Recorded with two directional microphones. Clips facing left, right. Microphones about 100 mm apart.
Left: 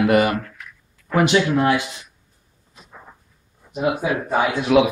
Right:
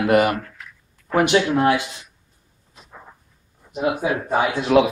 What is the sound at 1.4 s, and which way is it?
Speech, 10° right (ahead or behind).